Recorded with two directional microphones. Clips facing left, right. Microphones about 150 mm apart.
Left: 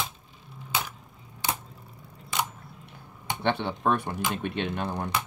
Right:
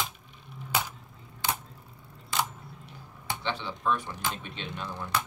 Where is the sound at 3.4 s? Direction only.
60° left (ahead or behind).